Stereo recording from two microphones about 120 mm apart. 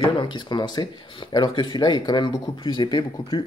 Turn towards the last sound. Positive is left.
turn(degrees=40)  # may be behind; listen again after turning